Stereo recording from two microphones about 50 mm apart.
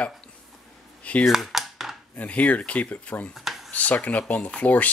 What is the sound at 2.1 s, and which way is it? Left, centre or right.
Speech, left.